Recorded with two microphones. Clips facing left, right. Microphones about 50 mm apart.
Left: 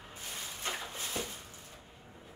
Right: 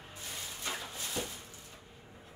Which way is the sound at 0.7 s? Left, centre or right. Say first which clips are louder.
Left 1 dB; left.